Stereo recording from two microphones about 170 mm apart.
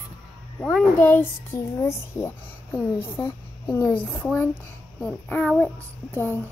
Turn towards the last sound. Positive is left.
turn(degrees=10)  # may be behind; listen again after turning